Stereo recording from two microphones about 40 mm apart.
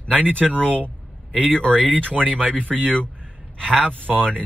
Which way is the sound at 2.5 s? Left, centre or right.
Left.